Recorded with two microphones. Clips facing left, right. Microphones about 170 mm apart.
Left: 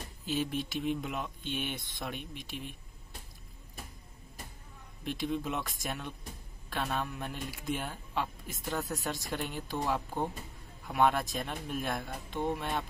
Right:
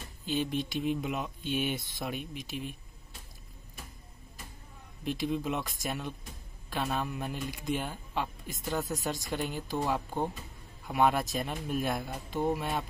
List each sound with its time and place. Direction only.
0.2 s speech: centre (ahead or behind)
5.0 s speech: centre (ahead or behind)